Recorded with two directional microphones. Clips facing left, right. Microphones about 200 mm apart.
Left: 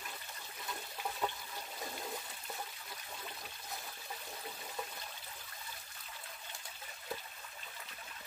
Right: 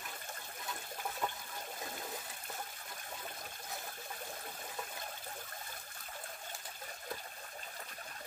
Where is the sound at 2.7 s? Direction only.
50° right (ahead or behind).